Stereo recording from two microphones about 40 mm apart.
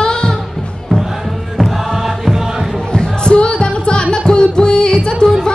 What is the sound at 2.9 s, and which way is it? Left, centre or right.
Music, left.